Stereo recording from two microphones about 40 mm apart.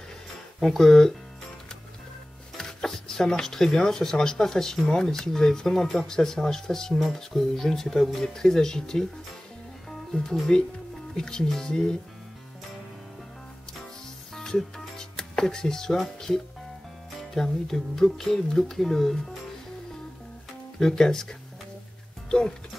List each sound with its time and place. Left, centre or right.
0.6 s speech: centre
2.5 s speech: centre
10.5 s speech: centre
14.3 s music: centre
17.3 s speech: centre
20.8 s speech: centre